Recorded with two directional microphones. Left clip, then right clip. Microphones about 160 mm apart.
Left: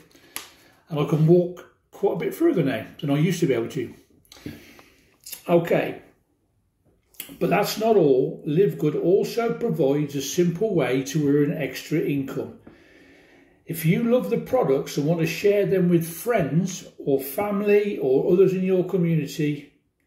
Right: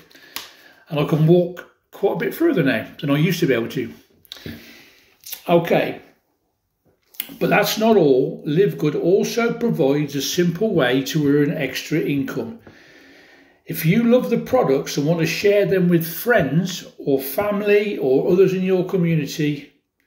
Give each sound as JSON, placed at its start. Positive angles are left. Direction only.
{"t": 0.8, "sound": "speech", "side_deg": 20}
{"t": 2.3, "sound": "speech", "side_deg": 15}
{"t": 5.6, "sound": "speech", "side_deg": 5}
{"t": 7.2, "sound": "speech", "side_deg": 10}
{"t": 13.7, "sound": "speech", "side_deg": 10}